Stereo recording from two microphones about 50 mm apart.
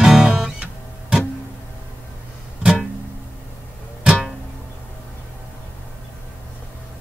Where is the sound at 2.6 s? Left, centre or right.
Centre.